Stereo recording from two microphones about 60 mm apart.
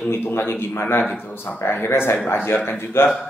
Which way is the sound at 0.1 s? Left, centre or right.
Left.